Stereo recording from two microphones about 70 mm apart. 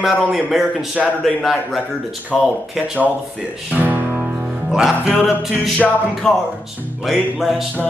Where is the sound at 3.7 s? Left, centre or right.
Right.